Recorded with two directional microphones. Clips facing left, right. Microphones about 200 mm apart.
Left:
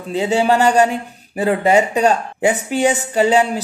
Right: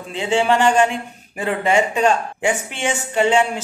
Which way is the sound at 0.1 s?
40° left (ahead or behind).